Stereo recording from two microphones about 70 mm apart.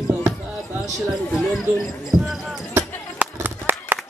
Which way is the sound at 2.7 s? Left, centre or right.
Right.